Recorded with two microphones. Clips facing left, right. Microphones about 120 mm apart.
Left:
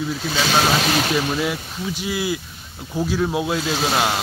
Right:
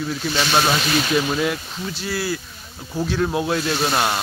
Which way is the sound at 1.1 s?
5° left (ahead or behind).